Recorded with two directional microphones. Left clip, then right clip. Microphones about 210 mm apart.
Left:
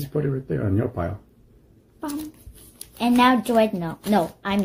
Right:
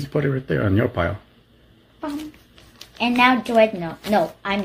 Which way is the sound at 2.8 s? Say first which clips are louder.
Right 1 dB; 35° left (ahead or behind).